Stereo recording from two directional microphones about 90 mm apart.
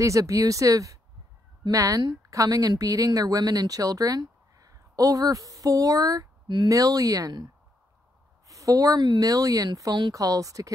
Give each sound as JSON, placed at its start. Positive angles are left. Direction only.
{"t": 0.0, "sound": "speech", "side_deg": -35}
{"t": 6.4, "sound": "speech", "side_deg": -60}
{"t": 6.7, "sound": "speech", "side_deg": -40}
{"t": 8.5, "sound": "speech", "side_deg": -40}